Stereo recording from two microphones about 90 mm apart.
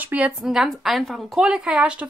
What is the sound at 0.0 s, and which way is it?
A woman's voice, 15° right (ahead or behind).